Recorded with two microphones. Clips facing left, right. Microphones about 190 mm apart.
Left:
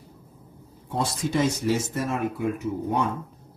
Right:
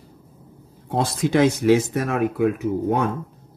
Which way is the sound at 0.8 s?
90° right.